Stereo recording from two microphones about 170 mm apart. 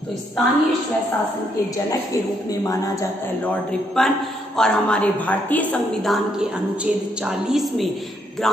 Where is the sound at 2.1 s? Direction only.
20° left (ahead or behind).